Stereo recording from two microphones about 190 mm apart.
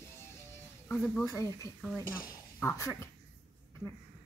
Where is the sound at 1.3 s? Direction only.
15° left (ahead or behind).